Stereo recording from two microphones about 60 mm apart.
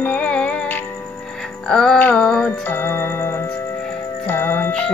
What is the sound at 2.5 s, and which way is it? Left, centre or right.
Music, left.